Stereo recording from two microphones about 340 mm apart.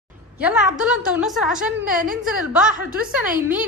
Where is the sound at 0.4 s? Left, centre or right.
Centre.